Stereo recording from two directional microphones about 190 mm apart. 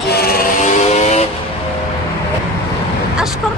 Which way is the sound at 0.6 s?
35° left (ahead or behind).